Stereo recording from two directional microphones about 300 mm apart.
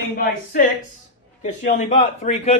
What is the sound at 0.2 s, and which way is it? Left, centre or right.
Speech, left.